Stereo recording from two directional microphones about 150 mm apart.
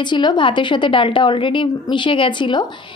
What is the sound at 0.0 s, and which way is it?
A woman's voice, 30° left (ahead or behind).